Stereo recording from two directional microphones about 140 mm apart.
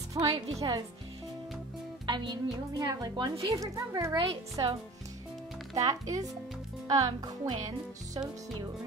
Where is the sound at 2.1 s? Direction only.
30° right (ahead or behind).